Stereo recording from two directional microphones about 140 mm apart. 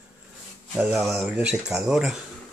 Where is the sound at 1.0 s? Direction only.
5° right (ahead or behind).